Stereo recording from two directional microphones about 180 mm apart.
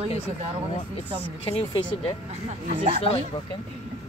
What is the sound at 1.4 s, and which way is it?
Speech, 30° left (ahead or behind).